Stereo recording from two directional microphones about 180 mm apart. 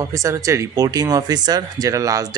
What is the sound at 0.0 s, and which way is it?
Speech, 15° right (ahead or behind).